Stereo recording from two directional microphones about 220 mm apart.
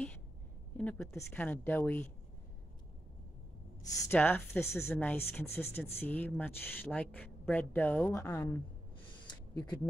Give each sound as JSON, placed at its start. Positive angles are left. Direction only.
{"t": 0.7, "sound": "speech", "side_deg": 10}
{"t": 4.1, "sound": "speech", "side_deg": 10}
{"t": 9.0, "sound": "a sound", "side_deg": 20}